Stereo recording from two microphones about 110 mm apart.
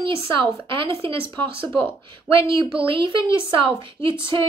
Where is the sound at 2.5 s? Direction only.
55° right (ahead or behind).